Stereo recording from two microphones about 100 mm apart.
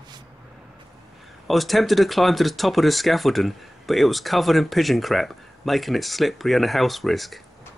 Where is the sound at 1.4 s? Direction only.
Centre (ahead or behind).